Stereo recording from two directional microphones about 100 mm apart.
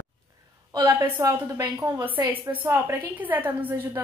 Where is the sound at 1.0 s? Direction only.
30° right (ahead or behind).